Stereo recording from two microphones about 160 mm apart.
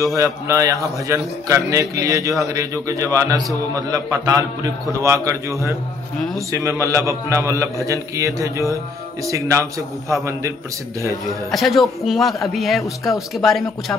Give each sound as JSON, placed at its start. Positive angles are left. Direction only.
{"t": 0.0, "sound": "a man's voice", "side_deg": -20}
{"t": 11.2, "sound": "a man's voice", "side_deg": 0}